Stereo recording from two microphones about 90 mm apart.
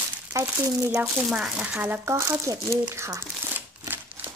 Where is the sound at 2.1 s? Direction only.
30° right (ahead or behind).